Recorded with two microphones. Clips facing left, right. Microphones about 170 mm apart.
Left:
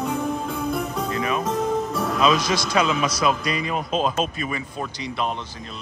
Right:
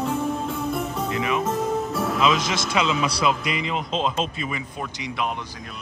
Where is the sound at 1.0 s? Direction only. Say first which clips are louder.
Right 2 dB; 20° right (ahead or behind).